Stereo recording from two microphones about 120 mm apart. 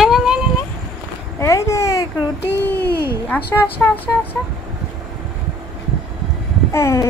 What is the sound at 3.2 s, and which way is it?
Speech, 15° left (ahead or behind).